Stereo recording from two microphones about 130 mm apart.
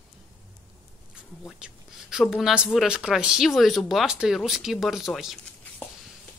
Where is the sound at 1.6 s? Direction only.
5° right (ahead or behind).